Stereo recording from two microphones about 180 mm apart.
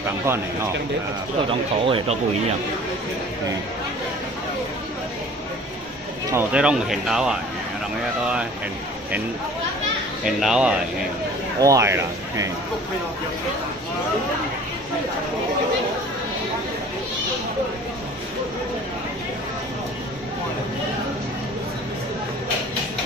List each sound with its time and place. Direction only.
1.9 s speech: 30° right (ahead or behind)
6.3 s speech: 5° right (ahead or behind)
10.2 s speech: 5° right (ahead or behind)
11.6 s speech: 15° right (ahead or behind)